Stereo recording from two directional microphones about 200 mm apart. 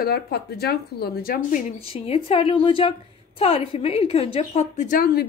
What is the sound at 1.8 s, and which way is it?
A woman's voice, 30° left (ahead or behind).